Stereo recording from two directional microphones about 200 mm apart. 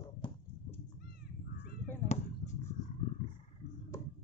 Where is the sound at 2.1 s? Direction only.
35° left (ahead or behind).